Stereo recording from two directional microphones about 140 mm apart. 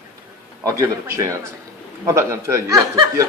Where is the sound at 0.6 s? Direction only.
20° right (ahead or behind).